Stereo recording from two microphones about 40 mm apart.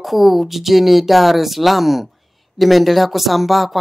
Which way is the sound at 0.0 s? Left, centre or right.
Centre.